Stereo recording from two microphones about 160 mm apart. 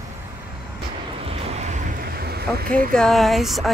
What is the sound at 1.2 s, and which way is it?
Vehicle, 40° right (ahead or behind).